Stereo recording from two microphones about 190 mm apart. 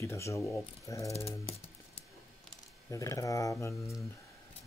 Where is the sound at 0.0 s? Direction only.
15° left (ahead or behind).